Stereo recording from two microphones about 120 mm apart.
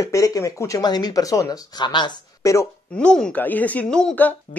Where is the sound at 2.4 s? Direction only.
25° left (ahead or behind).